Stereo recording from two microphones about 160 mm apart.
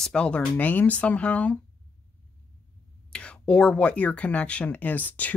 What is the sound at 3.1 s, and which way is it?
Speech, 5° left (ahead or behind).